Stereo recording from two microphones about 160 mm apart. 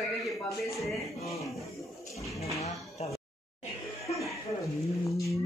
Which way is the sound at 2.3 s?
20° left (ahead or behind).